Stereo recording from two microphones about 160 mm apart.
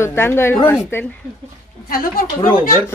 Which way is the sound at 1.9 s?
65° left (ahead or behind).